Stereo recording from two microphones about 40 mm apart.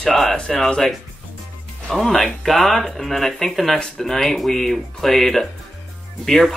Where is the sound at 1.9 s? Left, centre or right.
Centre.